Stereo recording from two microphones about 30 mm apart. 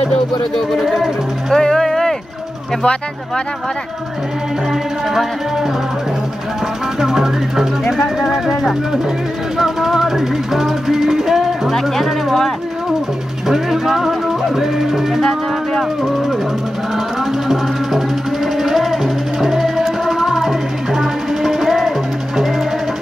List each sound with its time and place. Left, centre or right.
0.7 s speech: centre
1.5 s music: centre
7.0 s music: centre
9.6 s speech: centre
13.5 s music: centre
16.0 s speech: centre
17.5 s music: centre